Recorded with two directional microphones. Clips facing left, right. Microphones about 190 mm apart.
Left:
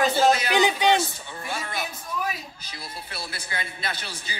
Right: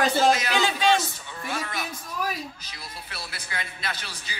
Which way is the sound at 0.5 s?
15° left (ahead or behind).